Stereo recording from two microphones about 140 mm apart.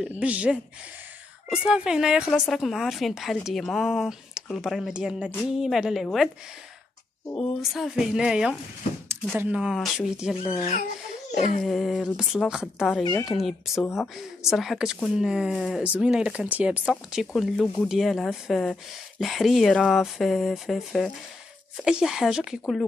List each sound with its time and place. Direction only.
0.2 s speech: 10° right (ahead or behind)
7.7 s speech: centre (ahead or behind)
11.3 s a sound: 60° left (ahead or behind)
11.6 s speech: centre (ahead or behind)